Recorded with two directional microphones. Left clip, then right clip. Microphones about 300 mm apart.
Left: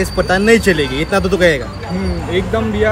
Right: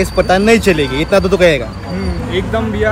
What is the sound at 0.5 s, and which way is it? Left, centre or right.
Speech, right.